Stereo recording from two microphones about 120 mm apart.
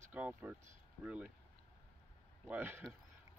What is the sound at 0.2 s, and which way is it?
Speech, 10° right (ahead or behind).